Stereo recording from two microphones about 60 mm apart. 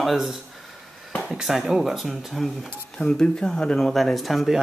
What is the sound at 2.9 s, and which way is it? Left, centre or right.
Speech, centre.